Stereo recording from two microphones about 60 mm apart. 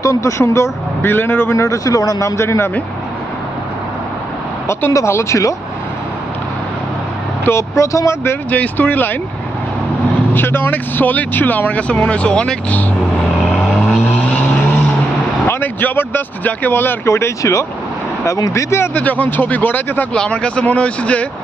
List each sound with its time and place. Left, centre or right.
0.0 s speech: left
1.0 s speech: left
1.5 s speech: left
2.3 s speech: left
4.9 s speech: left
7.4 s speech: left
8.5 s speech: left
10.3 s speech: left; by 12.8 s centre
13.5 s vehicle: centre
15.4 s speech: left
17.0 s speech: left
18.9 s speech: left
20.2 s speech: centre